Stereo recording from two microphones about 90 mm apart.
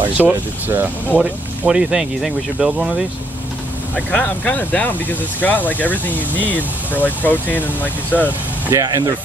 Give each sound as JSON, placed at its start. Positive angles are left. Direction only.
{"t": 0.2, "sound": "speech", "side_deg": -25}
{"t": 1.6, "sound": "speech", "side_deg": -10}
{"t": 3.9, "sound": "speech", "side_deg": 15}
{"t": 8.7, "sound": "speech", "side_deg": -40}